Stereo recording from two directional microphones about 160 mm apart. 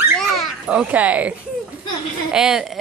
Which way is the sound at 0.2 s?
Centre (ahead or behind).